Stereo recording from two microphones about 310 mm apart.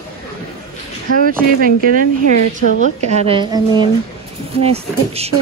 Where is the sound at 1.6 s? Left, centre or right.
Right.